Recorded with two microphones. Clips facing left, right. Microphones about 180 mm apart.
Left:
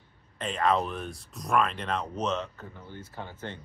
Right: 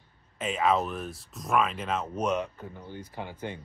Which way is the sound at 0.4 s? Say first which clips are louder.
Right 1 dB; 5° right (ahead or behind).